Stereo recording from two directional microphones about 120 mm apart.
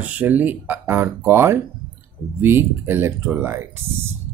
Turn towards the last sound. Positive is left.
turn(degrees=-20)  # may be behind; listen again after turning